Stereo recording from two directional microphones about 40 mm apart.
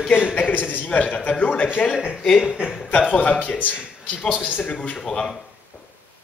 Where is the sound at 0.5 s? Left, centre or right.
Left.